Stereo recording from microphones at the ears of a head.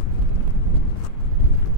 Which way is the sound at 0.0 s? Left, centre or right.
Left.